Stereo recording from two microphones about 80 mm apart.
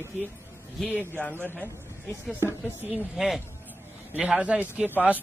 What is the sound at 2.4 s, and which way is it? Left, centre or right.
Speech, left.